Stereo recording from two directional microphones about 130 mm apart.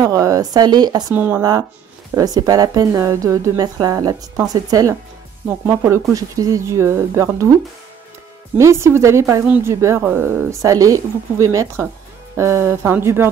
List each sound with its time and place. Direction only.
0.0 s speech: 25° right (ahead or behind)
1.1 s speech: 15° right (ahead or behind)
2.1 s speech: 30° right (ahead or behind)
6.1 s speech: 25° right (ahead or behind)
8.5 s speech: 20° right (ahead or behind)